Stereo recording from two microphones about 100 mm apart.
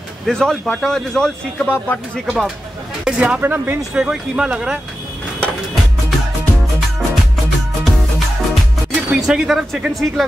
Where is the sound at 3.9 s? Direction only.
10° right (ahead or behind).